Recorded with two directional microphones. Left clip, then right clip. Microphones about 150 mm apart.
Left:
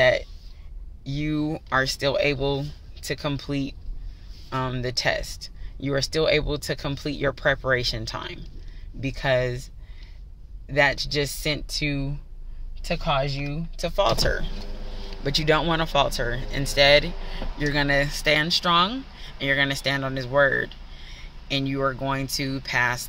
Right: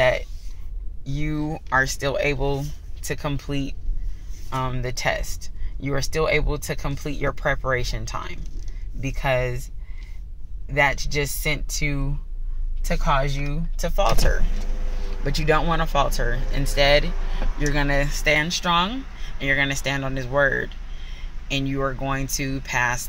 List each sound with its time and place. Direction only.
1.0 s speech: 35° left (ahead or behind)
4.5 s speech: 40° left (ahead or behind)
10.7 s speech: 35° left (ahead or behind)